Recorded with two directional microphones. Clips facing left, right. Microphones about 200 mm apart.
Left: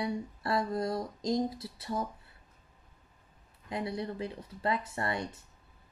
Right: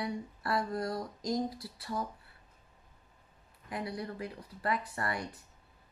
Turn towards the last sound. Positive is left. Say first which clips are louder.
# left 2 dB
turn(degrees=25)  # may be behind; listen again after turning